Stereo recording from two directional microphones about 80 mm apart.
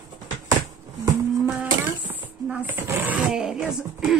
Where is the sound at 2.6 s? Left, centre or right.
Right.